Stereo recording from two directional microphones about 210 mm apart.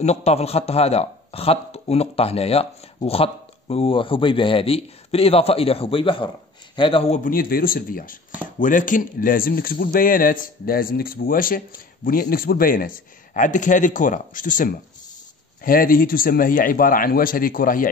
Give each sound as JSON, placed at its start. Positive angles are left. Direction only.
{"t": 0.0, "sound": "speech", "side_deg": 30}
{"t": 7.2, "sound": "speech", "side_deg": 45}